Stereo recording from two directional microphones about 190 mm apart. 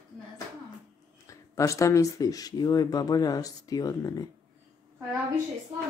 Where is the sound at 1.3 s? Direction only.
15° left (ahead or behind).